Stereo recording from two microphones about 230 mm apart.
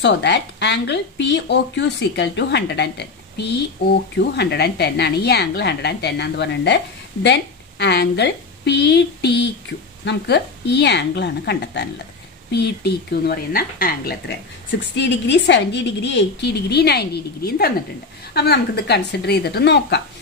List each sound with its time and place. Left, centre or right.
0.0 s a woman's voice: left
7.8 s a woman's voice: left